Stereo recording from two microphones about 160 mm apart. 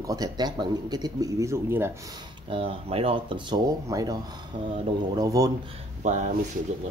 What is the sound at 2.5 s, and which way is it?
Speech, 35° right (ahead or behind).